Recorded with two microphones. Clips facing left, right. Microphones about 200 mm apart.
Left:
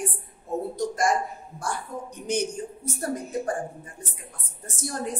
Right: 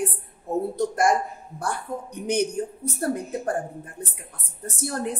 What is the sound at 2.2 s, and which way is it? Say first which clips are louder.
A woman's voice: right 4 dB; 60° right (ahead or behind).